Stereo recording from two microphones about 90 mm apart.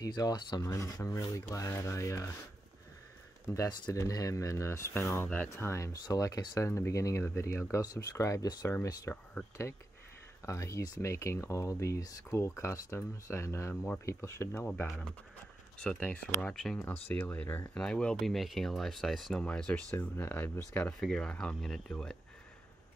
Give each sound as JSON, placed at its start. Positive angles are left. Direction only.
{"t": 0.0, "sound": "speech", "side_deg": 50}
{"t": 3.5, "sound": "speech", "side_deg": 40}
{"t": 6.0, "sound": "speech", "side_deg": 45}
{"t": 7.7, "sound": "speech", "side_deg": 45}
{"t": 9.1, "sound": "speech", "side_deg": 15}
{"t": 10.4, "sound": "speech", "side_deg": 35}
{"t": 14.9, "sound": "speech", "side_deg": 0}
{"t": 15.8, "sound": "speech", "side_deg": 10}
{"t": 17.7, "sound": "speech", "side_deg": 10}
{"t": 19.4, "sound": "speech", "side_deg": 15}
{"t": 21.0, "sound": "speech", "side_deg": 10}